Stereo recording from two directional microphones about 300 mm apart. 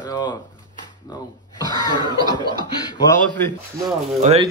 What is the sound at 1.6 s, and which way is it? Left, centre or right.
Cough, centre.